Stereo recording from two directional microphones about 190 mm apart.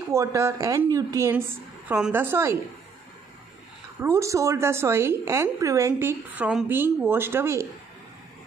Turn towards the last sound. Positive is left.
turn(degrees=-15)  # may be behind; listen again after turning